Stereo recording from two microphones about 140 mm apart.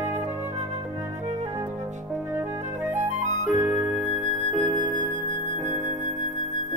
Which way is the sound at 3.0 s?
60° right (ahead or behind).